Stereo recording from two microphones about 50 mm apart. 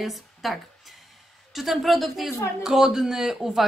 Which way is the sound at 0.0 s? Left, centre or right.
Centre.